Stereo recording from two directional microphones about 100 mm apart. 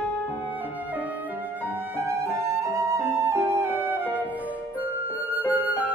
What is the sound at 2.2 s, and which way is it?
Music, 30° right (ahead or behind).